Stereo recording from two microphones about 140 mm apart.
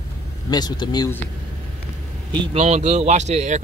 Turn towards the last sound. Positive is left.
turn(degrees=-55)  # may be behind; listen again after turning